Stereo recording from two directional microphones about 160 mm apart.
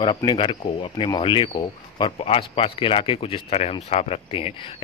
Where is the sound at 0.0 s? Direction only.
30° left (ahead or behind).